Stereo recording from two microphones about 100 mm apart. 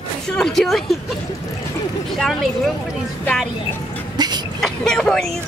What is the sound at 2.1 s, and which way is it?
Speech, centre (ahead or behind).